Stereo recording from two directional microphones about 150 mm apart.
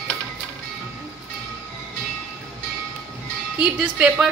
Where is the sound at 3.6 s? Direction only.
5° right (ahead or behind).